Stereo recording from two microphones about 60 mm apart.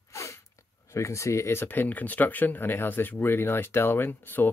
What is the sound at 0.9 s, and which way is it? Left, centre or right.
Speech, left.